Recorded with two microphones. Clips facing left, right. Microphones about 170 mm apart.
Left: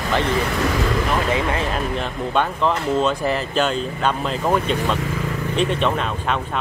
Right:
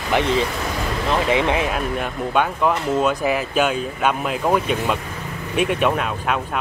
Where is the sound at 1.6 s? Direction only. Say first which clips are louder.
Right 1 dB; 10° right (ahead or behind).